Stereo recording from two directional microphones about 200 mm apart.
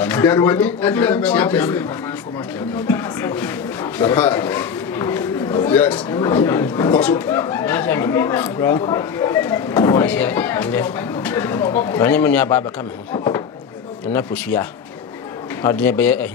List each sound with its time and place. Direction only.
0.0 s speech: 10° left (ahead or behind)
2.9 s a man's voice: 10° left (ahead or behind)
13.1 s a sound: 20° left (ahead or behind)
14.1 s speech: 10° left (ahead or behind)